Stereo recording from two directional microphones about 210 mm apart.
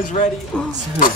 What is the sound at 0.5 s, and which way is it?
Speech, 5° left (ahead or behind).